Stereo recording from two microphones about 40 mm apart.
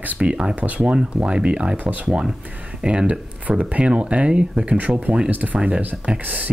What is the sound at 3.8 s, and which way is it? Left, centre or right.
Speech, right.